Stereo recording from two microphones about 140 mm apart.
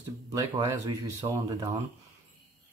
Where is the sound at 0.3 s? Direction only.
25° right (ahead or behind).